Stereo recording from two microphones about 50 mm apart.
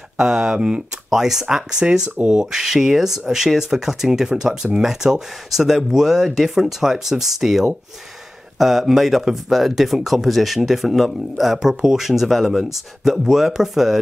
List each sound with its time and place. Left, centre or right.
0.2 s speech: centre